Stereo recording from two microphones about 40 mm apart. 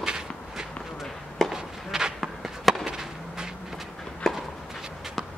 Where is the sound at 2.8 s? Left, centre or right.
Centre.